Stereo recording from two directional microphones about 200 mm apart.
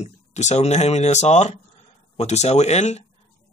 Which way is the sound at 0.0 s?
35° left (ahead or behind).